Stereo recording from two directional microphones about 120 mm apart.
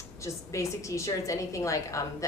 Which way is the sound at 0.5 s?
25° left (ahead or behind).